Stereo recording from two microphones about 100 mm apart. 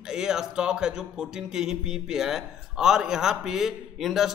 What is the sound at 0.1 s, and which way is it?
Speech, 5° right (ahead or behind).